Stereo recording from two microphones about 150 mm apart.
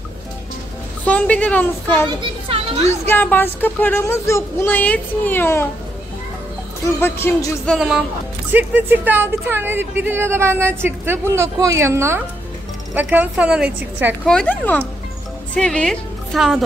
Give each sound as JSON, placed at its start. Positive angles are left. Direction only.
{"t": 1.0, "sound": "speech", "side_deg": 10}
{"t": 2.0, "sound": "speech", "side_deg": -40}
{"t": 3.1, "sound": "speech", "side_deg": 15}
{"t": 7.0, "sound": "speech", "side_deg": 15}
{"t": 7.6, "sound": "a woman's voice", "side_deg": 0}
{"t": 8.5, "sound": "a woman's voice", "side_deg": -10}
{"t": 14.2, "sound": "a woman's voice", "side_deg": 5}